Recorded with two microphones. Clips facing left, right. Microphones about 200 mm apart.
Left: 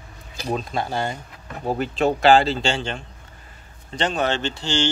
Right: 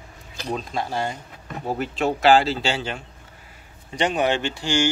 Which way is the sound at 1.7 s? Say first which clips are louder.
Left 3 dB; centre (ahead or behind).